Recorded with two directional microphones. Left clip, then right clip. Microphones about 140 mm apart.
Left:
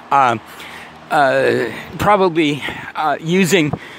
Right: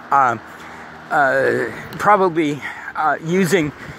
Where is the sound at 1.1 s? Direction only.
90° left.